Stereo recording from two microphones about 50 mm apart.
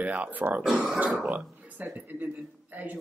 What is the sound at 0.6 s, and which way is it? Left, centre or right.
Speech, centre.